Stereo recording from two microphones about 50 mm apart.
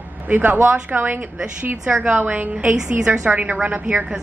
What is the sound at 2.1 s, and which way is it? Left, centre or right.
A woman's voice, right.